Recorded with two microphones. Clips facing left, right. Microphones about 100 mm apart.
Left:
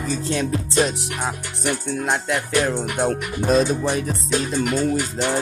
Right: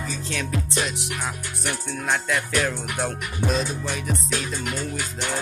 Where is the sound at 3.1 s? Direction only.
40° left (ahead or behind).